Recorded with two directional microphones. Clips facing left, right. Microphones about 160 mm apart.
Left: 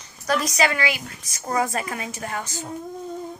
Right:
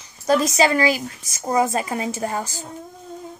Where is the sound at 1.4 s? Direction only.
25° right (ahead or behind).